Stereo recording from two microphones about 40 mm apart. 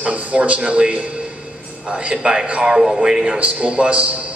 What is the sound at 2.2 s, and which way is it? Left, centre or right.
Speech, centre.